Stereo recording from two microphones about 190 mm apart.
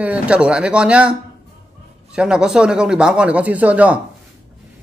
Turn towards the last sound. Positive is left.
turn(degrees=-5)  # may be behind; listen again after turning